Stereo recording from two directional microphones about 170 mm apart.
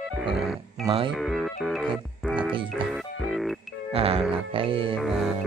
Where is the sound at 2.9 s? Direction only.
Centre (ahead or behind).